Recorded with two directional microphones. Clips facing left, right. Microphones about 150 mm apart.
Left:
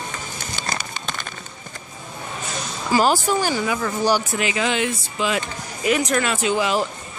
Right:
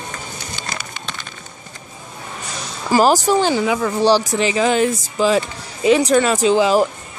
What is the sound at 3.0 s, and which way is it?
Speech, 40° right (ahead or behind).